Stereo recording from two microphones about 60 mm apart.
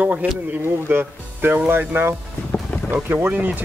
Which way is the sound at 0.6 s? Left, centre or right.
Right.